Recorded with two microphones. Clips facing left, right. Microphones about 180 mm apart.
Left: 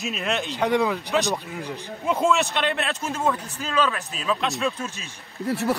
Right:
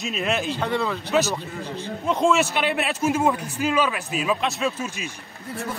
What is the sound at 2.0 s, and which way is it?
A man's voice, centre (ahead or behind).